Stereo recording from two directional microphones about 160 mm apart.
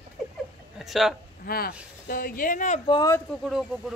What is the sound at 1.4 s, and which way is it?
Speech, 65° left (ahead or behind).